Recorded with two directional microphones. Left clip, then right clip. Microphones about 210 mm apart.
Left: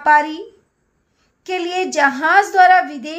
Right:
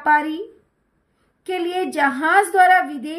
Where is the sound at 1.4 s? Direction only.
5° left (ahead or behind).